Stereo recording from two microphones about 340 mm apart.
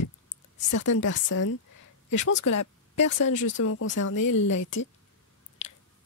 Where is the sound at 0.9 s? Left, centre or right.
Left.